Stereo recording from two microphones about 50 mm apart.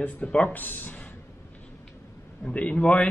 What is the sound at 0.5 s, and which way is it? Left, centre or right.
Speech, left.